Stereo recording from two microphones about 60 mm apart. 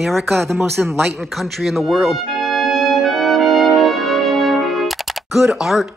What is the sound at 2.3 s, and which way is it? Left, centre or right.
Trumpet, centre.